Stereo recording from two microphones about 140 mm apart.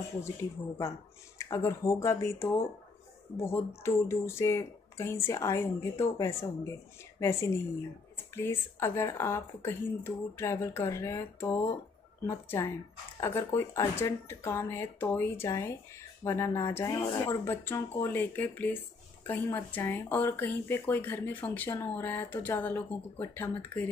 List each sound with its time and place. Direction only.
0.2 s speech: 20° left (ahead or behind)